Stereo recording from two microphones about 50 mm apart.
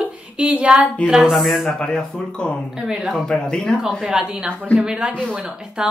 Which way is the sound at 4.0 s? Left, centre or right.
Centre.